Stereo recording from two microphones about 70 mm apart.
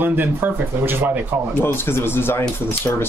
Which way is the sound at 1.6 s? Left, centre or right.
Left.